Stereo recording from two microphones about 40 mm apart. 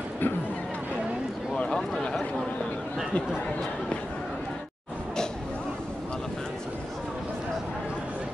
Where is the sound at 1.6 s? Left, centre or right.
Left.